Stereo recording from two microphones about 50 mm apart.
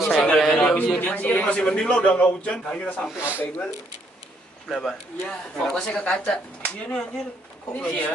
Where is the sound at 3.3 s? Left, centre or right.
Left.